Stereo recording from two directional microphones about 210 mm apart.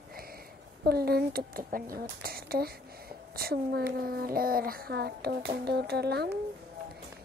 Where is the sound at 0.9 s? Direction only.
50° right (ahead or behind).